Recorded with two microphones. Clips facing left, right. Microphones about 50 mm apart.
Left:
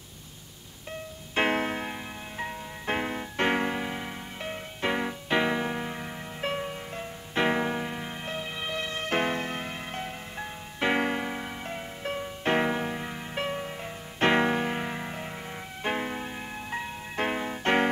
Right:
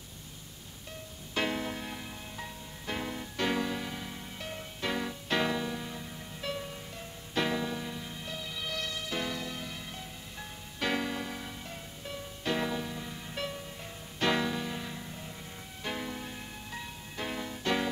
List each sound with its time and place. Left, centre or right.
1.3 s music: left
5.6 s music: left
9.0 s music: left
15.8 s music: left